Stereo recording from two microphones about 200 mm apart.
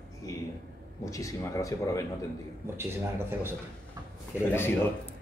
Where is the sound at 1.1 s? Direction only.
15° left (ahead or behind).